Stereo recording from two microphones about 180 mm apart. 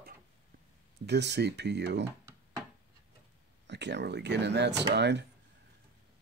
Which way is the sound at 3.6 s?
75° right (ahead or behind).